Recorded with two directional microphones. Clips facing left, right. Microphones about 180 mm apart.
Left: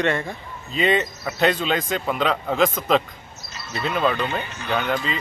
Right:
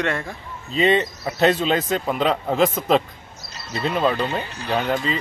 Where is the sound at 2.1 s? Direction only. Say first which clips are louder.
Right 1 dB; centre (ahead or behind).